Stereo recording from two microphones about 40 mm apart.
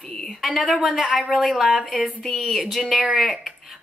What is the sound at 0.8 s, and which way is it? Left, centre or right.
Speech, centre.